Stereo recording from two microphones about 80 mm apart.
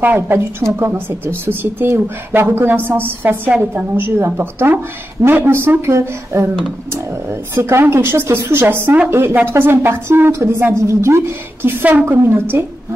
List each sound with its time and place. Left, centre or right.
0.0 s a woman's voice: right
7.5 s a woman's voice: right